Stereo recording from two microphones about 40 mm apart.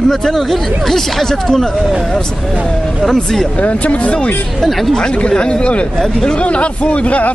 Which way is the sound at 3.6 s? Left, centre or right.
Left.